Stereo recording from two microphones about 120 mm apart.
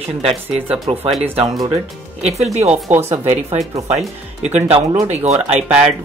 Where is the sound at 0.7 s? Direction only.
55° right (ahead or behind); by 5.3 s 70° right (ahead or behind).